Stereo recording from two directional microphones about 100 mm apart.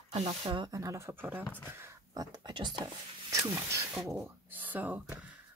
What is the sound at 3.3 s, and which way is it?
Speech, 30° right (ahead or behind).